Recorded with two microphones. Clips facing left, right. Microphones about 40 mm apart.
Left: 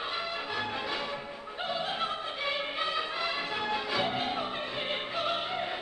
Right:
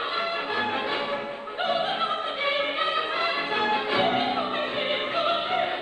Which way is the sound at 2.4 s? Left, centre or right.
Right.